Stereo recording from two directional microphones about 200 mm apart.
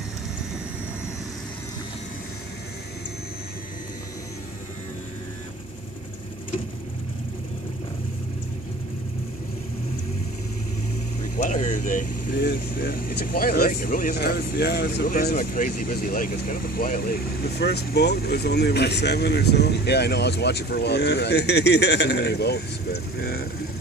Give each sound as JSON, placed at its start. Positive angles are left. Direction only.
{"t": 11.3, "sound": "speech", "side_deg": 35}